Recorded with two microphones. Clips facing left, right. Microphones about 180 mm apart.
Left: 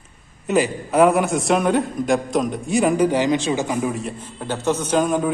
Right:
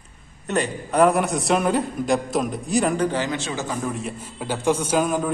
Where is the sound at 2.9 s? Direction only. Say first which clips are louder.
Left 5 dB; 15° left (ahead or behind).